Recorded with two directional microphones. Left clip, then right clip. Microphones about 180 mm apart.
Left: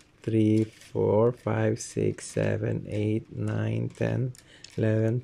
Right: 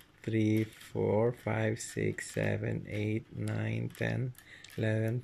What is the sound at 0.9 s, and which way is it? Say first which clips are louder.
Speech: left 7 dB; 10° left (ahead or behind).